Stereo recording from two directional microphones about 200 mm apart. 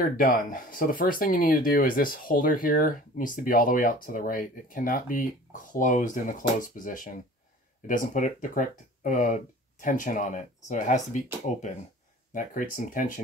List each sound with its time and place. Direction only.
0.0 s speech: 45° left (ahead or behind)
12.4 s speech: 45° left (ahead or behind)